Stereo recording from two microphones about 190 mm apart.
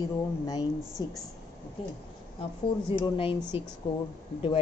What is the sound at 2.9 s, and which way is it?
Speech, 25° left (ahead or behind).